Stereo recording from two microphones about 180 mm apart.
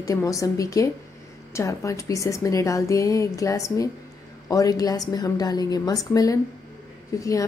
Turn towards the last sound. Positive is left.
turn(degrees=20)  # may be behind; listen again after turning